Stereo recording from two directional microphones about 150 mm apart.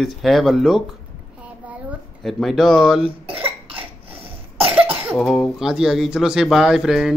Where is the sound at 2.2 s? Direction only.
Centre (ahead or behind).